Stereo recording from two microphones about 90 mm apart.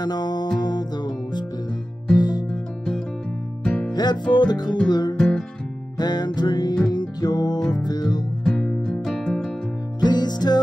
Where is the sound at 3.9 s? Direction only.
50° left (ahead or behind).